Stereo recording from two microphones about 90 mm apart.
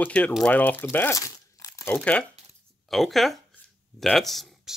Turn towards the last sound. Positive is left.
turn(degrees=0)  # may be behind; listen again after turning